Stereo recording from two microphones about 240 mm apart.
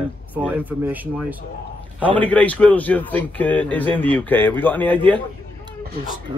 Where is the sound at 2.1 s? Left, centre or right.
Centre.